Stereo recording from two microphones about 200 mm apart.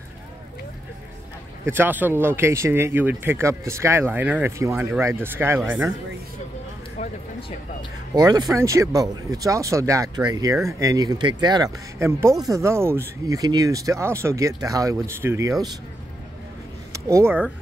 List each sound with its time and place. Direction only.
1.7 s speech: 10° right (ahead or behind)
7.0 s a sound: 35° left (ahead or behind)
8.1 s speech: 20° right (ahead or behind)
16.9 s speech: 15° right (ahead or behind)